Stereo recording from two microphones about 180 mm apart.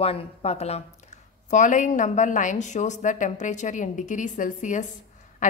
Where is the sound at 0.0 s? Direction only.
35° left (ahead or behind).